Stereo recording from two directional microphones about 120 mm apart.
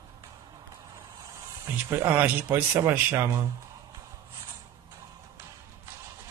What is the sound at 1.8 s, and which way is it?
Speech, 15° right (ahead or behind).